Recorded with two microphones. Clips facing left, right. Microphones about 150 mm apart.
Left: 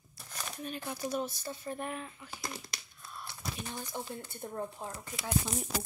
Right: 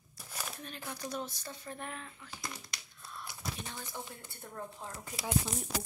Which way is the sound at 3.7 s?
15° left (ahead or behind).